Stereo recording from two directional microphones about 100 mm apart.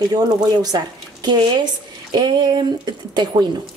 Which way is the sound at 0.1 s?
40° right (ahead or behind).